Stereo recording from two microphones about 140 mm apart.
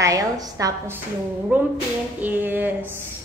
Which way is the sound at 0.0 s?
25° right (ahead or behind).